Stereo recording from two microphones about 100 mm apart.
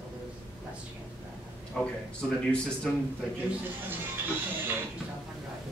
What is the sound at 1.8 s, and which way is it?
Speech, 5° left (ahead or behind).